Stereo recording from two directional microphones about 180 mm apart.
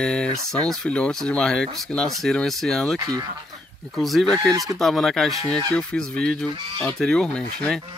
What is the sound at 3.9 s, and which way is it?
Speech, centre (ahead or behind).